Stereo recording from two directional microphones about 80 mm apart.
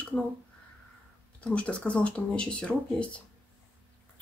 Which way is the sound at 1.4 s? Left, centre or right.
Centre.